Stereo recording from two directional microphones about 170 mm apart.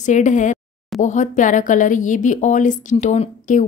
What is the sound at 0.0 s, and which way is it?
A woman's voice, 45° left (ahead or behind).